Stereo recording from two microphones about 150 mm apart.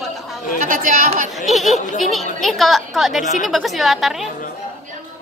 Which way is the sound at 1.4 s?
Centre (ahead or behind).